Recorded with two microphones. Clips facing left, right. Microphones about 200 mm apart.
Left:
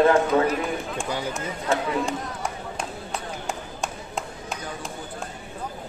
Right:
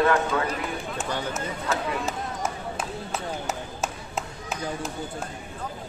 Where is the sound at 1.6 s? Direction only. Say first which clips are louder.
Left 5 dB; 5° right (ahead or behind).